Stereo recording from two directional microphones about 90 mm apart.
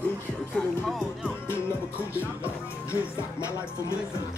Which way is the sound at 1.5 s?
25° left (ahead or behind).